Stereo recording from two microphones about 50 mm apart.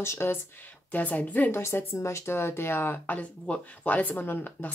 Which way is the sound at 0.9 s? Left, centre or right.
Left.